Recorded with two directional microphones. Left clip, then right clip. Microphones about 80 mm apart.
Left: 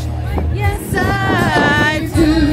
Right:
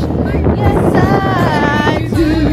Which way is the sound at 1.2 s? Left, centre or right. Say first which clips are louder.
Even; left.